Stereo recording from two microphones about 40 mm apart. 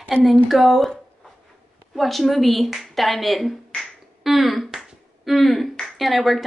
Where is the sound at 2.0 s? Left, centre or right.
Centre.